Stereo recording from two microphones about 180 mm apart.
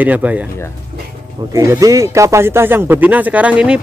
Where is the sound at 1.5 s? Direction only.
20° right (ahead or behind).